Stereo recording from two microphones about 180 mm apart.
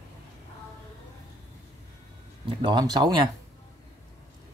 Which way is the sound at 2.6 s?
25° right (ahead or behind).